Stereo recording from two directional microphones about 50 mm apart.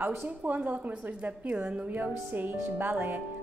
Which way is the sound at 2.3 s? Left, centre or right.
Right.